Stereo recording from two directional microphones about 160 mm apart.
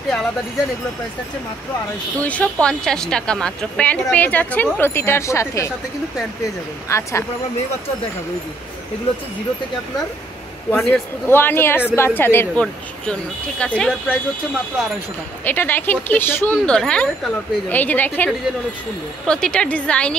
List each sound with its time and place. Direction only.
2.1 s a woman's voice: 10° left (ahead or behind)
6.9 s a woman's voice: 15° left (ahead or behind)
10.7 s a woman's voice: 10° left (ahead or behind)
15.4 s a woman's voice: 10° left (ahead or behind)